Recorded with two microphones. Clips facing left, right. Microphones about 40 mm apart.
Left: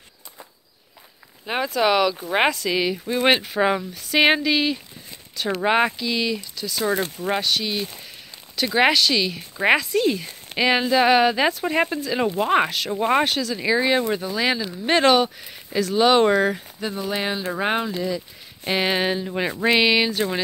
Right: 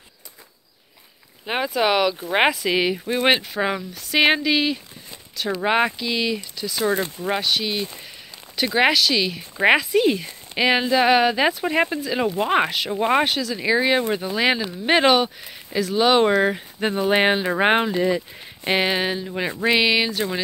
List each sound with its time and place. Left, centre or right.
1.4 s speech: centre
3.2 s speech: centre
16.8 s speech: right
18.9 s speech: centre